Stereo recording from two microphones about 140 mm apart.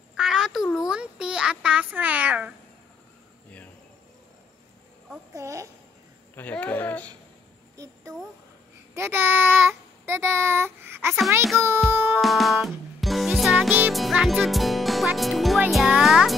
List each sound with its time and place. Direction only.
0.2 s a sound: 5° right (ahead or behind)
5.3 s speech: 20° right (ahead or behind)
6.3 s speech: 10° left (ahead or behind)
7.7 s a sound: 25° right (ahead or behind)
8.9 s child singing: 15° right (ahead or behind)
11.5 s speech: 20° right (ahead or behind)
11.9 s music: 15° right (ahead or behind)
12.2 s music: centre (ahead or behind)
15.1 s a child's voice: centre (ahead or behind)